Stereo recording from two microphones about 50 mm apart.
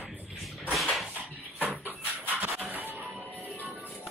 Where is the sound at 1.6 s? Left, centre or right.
Right.